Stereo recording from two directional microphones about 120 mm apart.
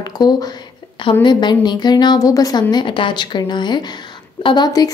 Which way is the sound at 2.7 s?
40° left (ahead or behind).